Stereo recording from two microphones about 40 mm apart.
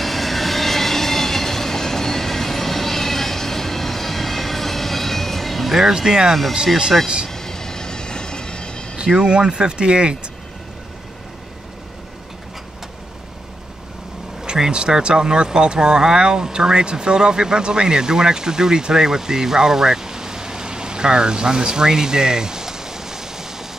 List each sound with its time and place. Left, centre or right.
0.0 s train: centre
5.9 s speech: centre
7.2 s train: centre
8.9 s speech: centre
14.4 s speech: right